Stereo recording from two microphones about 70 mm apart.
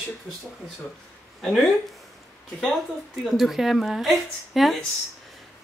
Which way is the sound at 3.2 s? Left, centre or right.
Centre.